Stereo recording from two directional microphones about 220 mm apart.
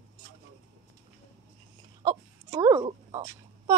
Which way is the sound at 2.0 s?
20° right (ahead or behind).